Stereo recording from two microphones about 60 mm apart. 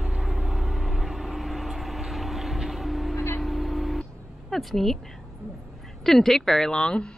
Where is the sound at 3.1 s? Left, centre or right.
Left.